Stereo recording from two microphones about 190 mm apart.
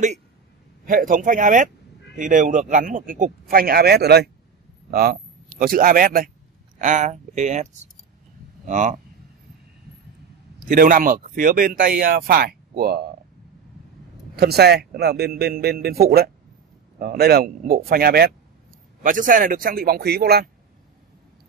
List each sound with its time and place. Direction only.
0.8 s speech: 45° right (ahead or behind)
10.6 s speech: 45° right (ahead or behind)
14.3 s a man's voice: 60° right (ahead or behind)